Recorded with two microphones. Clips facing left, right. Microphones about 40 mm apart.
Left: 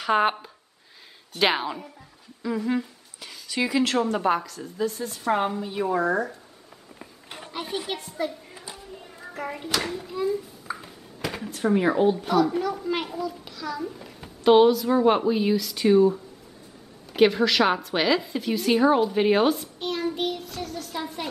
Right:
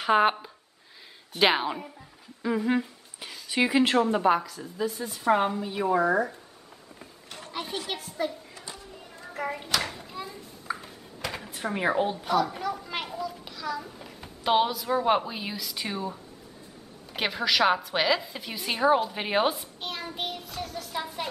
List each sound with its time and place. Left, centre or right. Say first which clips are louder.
0.0 s a child's voice: even; centre
2.4 s humming: even; centre
3.4 s a child's voice: right 1 dB; right; by 6.3 s centre
7.2 s a sound: left 2 dB; centre
7.5 s a child's voice: left 3 dB; centre
8.5 s child singing: left 2 dB; centre
9.4 s a child's voice: left 1 dB; centre
11.1 s a sound: left 4 dB; centre
11.5 s a child's voice: left 5 dB; centre